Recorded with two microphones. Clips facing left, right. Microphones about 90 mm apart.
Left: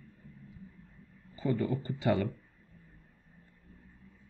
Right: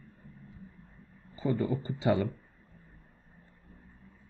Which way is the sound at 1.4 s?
25° right (ahead or behind).